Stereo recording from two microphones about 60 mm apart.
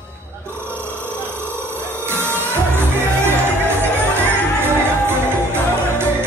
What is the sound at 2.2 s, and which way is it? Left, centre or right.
Music, right.